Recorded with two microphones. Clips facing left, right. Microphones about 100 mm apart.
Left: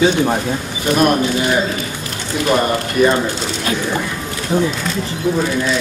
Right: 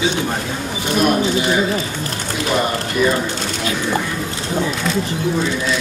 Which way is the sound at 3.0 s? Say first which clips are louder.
Left 4 dB; 50° left (ahead or behind).